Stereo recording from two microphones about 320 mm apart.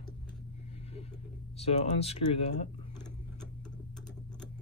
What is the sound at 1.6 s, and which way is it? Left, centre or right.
Speech, centre.